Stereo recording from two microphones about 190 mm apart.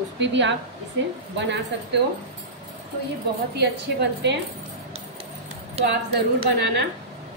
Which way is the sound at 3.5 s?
65° right (ahead or behind).